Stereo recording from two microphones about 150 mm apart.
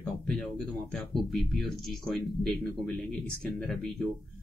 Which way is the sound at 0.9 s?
Centre (ahead or behind).